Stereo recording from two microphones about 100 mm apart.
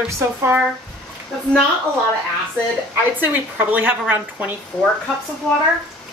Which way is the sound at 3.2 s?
20° right (ahead or behind).